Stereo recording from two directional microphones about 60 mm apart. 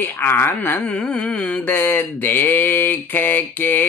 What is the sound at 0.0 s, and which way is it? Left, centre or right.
Mantra, left.